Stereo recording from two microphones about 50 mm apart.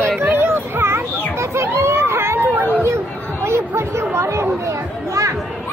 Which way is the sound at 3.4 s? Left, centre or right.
Right.